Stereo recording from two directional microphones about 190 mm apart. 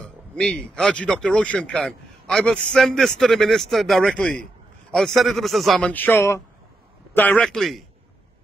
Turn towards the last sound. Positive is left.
turn(degrees=0)  # may be behind; listen again after turning